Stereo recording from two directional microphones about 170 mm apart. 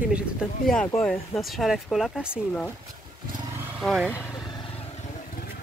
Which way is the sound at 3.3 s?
15° right (ahead or behind).